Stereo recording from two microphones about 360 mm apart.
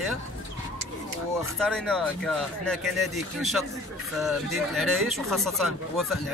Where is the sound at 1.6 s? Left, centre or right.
Centre.